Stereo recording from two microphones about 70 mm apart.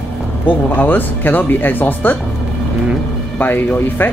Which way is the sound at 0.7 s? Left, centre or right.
Left.